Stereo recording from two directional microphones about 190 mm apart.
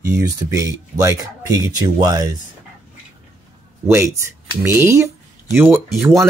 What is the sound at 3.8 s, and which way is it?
Speech, 15° right (ahead or behind).